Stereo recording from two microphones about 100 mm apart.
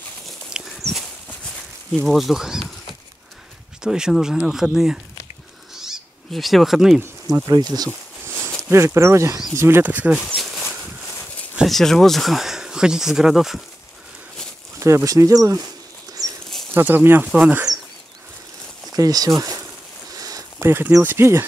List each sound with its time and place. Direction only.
0.5 s dog: 5° right (ahead or behind)
1.9 s speech: centre (ahead or behind)
5.8 s owl: centre (ahead or behind)
7.4 s speech: 40° right (ahead or behind)
8.6 s speech: 25° right (ahead or behind)
10.2 s a sound: centre (ahead or behind)
11.5 s speech: centre (ahead or behind)
14.8 s speech: 30° right (ahead or behind)
16.2 s a sound: 35° right (ahead or behind)
16.7 s speech: 20° right (ahead or behind)
18.9 s speech: 40° right (ahead or behind)
20.1 s a sound: 35° right (ahead or behind)
20.6 s speech: 25° right (ahead or behind)